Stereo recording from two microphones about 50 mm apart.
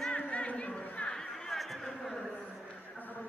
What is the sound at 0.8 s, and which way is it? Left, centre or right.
Chatter, left.